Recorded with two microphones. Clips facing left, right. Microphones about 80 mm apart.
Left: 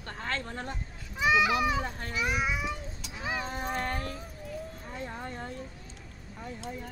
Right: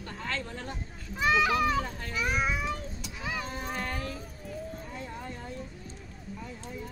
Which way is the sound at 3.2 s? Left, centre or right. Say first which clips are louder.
Left 2 dB; left.